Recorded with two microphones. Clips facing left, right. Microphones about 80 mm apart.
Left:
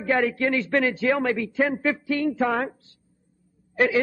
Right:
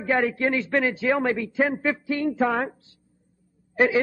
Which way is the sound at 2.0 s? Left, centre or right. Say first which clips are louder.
Left 1 dB; right.